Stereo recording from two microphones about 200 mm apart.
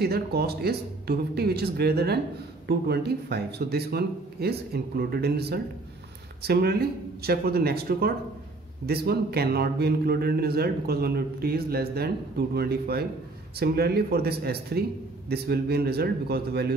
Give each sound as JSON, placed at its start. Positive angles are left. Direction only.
{"t": 0.0, "sound": "a man's voice", "side_deg": -50}